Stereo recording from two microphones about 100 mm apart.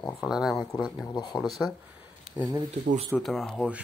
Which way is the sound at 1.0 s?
45° left (ahead or behind).